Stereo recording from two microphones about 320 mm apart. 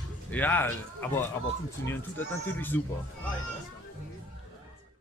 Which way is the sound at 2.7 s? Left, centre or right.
Centre.